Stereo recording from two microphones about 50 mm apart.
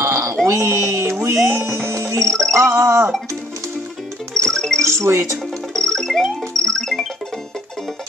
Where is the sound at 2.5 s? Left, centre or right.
Right.